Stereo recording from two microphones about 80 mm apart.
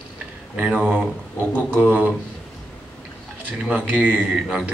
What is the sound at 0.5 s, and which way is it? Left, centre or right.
Speech, centre.